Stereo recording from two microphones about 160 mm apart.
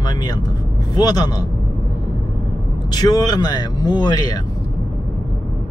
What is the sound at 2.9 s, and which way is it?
Speech, 25° left (ahead or behind).